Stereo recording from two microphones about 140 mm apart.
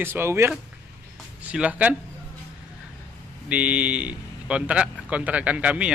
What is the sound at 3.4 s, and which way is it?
Speech, 10° right (ahead or behind).